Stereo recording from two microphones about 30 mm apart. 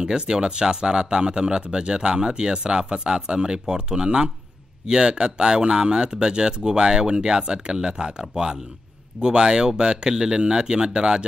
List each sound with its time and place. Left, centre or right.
0.0 s speech: right